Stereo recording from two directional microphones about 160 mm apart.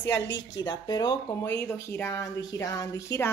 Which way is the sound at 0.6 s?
25° left (ahead or behind).